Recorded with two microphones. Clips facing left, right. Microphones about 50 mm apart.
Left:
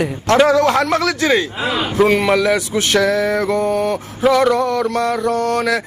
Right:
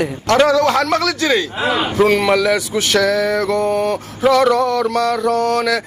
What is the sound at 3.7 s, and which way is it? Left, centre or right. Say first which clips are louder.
Speech: even; centre.